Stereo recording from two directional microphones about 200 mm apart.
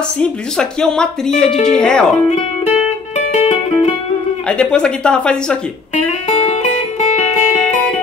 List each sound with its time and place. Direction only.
0.2 s speech: 5° left (ahead or behind)
2.2 s music: 35° left (ahead or behind)
4.5 s speech: 5° left (ahead or behind)
6.2 s music: 30° left (ahead or behind)